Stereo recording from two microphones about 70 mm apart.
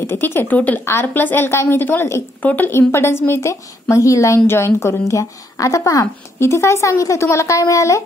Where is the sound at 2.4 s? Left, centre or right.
Left.